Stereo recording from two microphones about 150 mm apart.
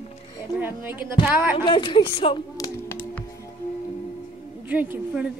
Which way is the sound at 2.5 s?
25° left (ahead or behind).